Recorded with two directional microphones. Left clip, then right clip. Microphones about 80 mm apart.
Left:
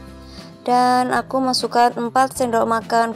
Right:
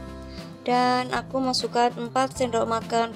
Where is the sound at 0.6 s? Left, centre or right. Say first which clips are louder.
Left 7 dB; left.